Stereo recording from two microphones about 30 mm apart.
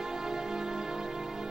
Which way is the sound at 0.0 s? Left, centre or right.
Centre.